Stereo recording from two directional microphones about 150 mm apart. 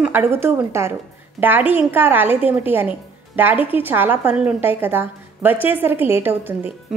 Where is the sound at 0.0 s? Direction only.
15° right (ahead or behind).